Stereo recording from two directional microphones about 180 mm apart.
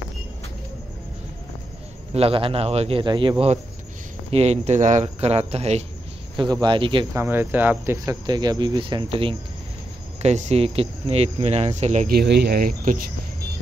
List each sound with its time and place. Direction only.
2.1 s speech: 30° right (ahead or behind)
6.3 s speech: 25° right (ahead or behind)
7.2 s speech: 10° right (ahead or behind); by 12.1 s 40° right (ahead or behind)
12.1 s speech: 65° right (ahead or behind)